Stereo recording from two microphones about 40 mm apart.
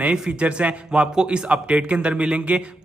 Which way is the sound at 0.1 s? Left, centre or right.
Right.